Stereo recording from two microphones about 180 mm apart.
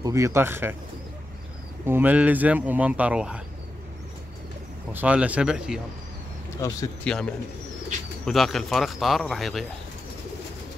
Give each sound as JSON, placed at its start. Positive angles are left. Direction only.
{"t": 0.0, "sound": "speech", "side_deg": -15}
{"t": 1.9, "sound": "speech", "side_deg": -10}
{"t": 4.9, "sound": "speech", "side_deg": -5}
{"t": 6.6, "sound": "speech", "side_deg": 20}
{"t": 7.1, "sound": "speech", "side_deg": 5}